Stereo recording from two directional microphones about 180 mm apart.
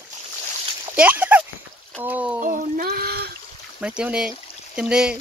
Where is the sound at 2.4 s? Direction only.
45° right (ahead or behind).